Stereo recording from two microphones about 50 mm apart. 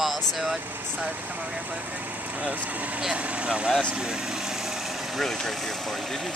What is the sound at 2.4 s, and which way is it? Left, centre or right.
Speech, right.